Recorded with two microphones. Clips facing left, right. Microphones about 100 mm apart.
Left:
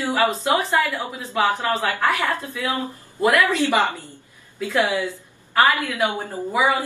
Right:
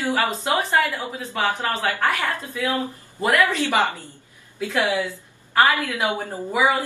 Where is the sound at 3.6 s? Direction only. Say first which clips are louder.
Left 1 dB; 20° right (ahead or behind).